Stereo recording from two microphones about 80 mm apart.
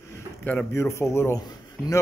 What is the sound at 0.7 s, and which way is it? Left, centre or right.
Speech, left.